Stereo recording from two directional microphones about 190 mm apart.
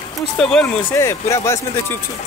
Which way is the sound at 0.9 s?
15° left (ahead or behind).